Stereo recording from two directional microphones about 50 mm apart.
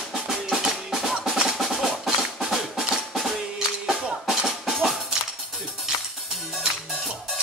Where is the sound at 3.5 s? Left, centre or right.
Centre.